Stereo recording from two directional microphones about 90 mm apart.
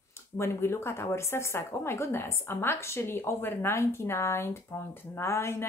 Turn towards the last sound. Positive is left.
turn(degrees=30)  # may be behind; listen again after turning